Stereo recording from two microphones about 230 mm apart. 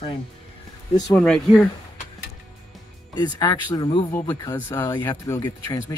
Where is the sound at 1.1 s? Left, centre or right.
Centre.